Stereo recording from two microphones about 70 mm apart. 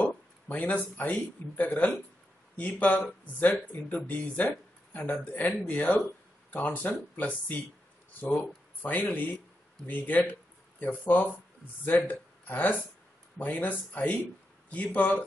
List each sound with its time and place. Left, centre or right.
0.0 s speech: left